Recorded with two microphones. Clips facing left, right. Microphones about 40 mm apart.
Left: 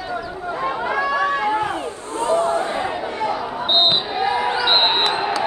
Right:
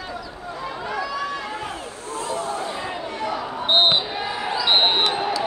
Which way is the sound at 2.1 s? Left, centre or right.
Left.